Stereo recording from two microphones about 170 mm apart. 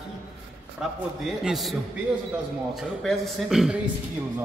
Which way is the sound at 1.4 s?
Centre (ahead or behind).